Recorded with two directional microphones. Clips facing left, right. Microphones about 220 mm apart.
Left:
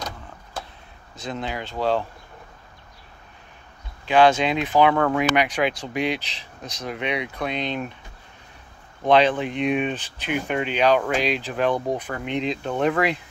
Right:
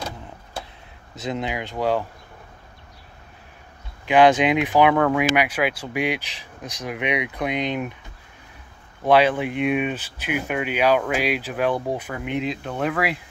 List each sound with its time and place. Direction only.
1.2 s speech: 15° right (ahead or behind)
4.0 s speech: 15° right (ahead or behind)
9.0 s speech: 10° right (ahead or behind)